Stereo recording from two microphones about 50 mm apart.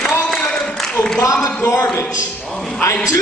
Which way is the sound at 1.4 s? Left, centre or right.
Left.